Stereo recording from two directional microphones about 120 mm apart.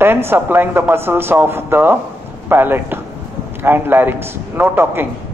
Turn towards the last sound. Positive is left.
turn(degrees=-15)  # may be behind; listen again after turning